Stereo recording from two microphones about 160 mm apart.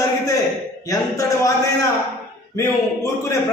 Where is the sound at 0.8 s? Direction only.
20° left (ahead or behind).